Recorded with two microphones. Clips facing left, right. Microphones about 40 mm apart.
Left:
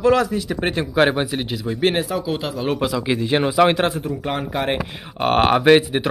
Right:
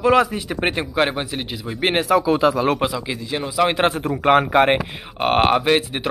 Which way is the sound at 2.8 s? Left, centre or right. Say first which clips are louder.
Even; right.